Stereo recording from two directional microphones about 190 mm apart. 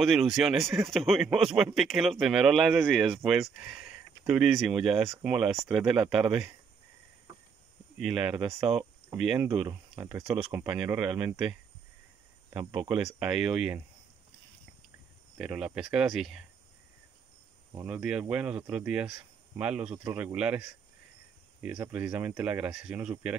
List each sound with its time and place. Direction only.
0.0 s speech: centre (ahead or behind)
8.0 s speech: 5° right (ahead or behind)
9.7 s speech: 20° right (ahead or behind); by 11.5 s 5° right (ahead or behind)
12.9 s speech: 5° right (ahead or behind)
15.3 s speech: 5° right (ahead or behind)
17.8 s speech: 5° right (ahead or behind)
20.0 s speech: 15° right (ahead or behind)
21.6 s speech: 10° right (ahead or behind)